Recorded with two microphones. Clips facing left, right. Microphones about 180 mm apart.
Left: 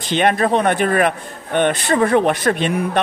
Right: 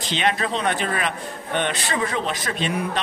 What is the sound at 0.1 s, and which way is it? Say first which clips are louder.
A man's voice: left 8 dB; 55° left (ahead or behind).